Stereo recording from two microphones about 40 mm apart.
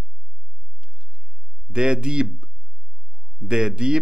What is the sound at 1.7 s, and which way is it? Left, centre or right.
A man's voice, right.